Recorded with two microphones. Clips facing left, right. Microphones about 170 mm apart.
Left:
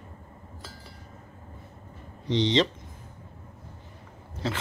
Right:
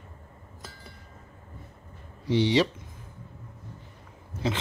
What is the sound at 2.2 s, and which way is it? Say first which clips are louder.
Speech: right 1 dB; 10° right (ahead or behind).